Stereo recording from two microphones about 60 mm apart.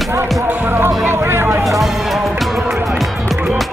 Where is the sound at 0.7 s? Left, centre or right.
Right.